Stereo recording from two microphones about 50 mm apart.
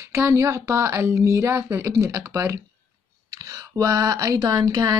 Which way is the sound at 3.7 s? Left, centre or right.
Right.